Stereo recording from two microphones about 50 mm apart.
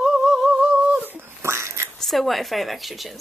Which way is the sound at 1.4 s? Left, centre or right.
Right.